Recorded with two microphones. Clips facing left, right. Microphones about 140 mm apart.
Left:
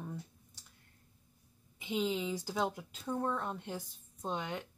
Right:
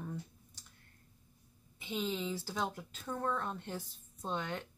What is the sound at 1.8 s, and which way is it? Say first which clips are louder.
Speech: left 3 dB; 15° left (ahead or behind).